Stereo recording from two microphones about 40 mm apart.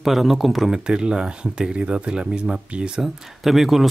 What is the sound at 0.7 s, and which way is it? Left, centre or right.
Speech, right.